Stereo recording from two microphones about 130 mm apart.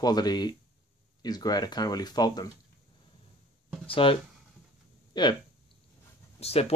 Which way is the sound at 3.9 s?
45° left (ahead or behind).